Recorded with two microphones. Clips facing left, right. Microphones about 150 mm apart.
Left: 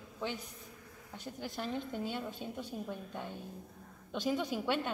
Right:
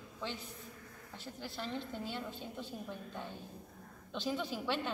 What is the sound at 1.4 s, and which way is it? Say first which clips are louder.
Speech: left 3 dB; 15° left (ahead or behind).